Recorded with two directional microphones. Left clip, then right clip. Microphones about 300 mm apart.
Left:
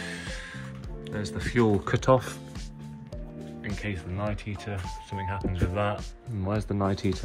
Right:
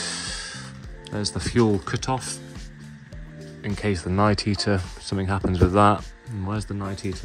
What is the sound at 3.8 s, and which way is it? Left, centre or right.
Speech, right.